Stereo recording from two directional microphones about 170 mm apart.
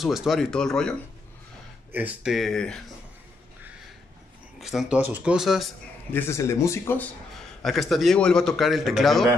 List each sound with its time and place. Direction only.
0.0 s a man's voice: centre (ahead or behind)
1.9 s a man's voice: 10° right (ahead or behind)
4.6 s a man's voice: centre (ahead or behind)
6.1 s speech: 15° left (ahead or behind)
7.6 s a man's voice: centre (ahead or behind)